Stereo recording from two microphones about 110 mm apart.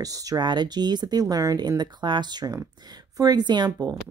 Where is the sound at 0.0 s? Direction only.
30° right (ahead or behind).